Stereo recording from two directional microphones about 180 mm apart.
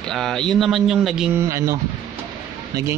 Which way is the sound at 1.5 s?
15° right (ahead or behind).